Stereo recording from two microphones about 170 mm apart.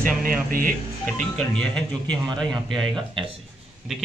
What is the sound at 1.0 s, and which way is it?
A man's voice, 5° left (ahead or behind).